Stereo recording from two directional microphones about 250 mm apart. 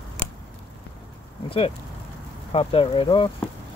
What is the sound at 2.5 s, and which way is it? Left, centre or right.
Speech, left.